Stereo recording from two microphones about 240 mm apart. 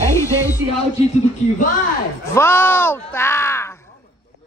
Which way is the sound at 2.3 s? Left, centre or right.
Centre.